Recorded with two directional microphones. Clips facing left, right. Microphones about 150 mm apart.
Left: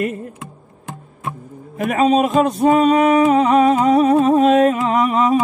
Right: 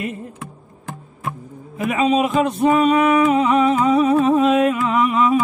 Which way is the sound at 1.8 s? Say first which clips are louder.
Left 2 dB; 45° left (ahead or behind).